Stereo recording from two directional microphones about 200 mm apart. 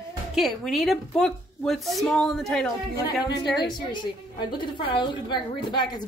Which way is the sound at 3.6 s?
25° left (ahead or behind).